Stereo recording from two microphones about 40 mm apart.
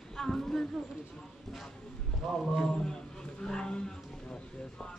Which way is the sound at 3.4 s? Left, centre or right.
Centre.